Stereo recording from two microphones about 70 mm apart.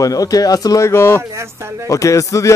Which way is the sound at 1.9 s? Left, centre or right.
Left.